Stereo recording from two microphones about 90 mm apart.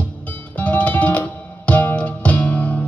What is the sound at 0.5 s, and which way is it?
Music, 15° left (ahead or behind).